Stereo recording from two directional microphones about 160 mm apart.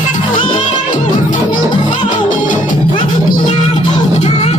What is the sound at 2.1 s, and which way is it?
Music, 55° left (ahead or behind).